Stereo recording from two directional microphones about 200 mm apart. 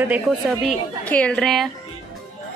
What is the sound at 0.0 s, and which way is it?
A woman's voice, 5° right (ahead or behind).